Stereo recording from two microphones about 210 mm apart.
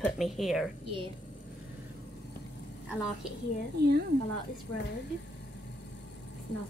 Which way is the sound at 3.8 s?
50° right (ahead or behind).